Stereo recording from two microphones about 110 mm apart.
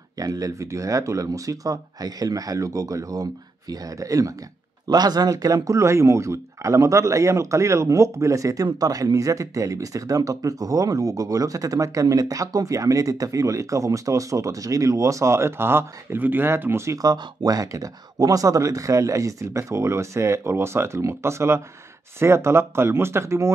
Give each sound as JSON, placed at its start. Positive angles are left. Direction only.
{"t": 0.2, "sound": "speech", "side_deg": -30}